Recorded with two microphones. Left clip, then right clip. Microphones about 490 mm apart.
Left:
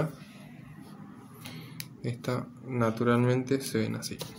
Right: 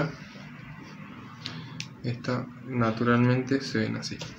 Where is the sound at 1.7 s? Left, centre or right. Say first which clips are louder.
Right 3 dB; left.